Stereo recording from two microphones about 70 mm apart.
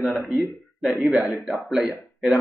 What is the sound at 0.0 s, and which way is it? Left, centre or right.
A man's voice, centre.